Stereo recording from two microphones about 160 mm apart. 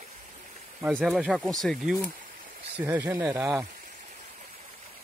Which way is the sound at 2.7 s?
10° right (ahead or behind).